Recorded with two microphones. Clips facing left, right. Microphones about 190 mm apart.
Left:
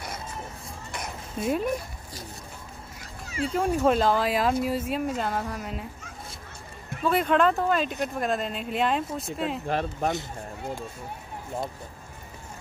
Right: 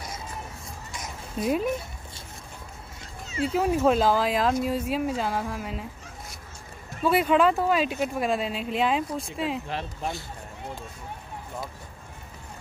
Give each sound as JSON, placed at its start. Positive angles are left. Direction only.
{"t": 1.4, "sound": "speech", "side_deg": 0}
{"t": 3.4, "sound": "speech", "side_deg": -5}
{"t": 7.1, "sound": "speech", "side_deg": -5}
{"t": 9.7, "sound": "speech", "side_deg": 50}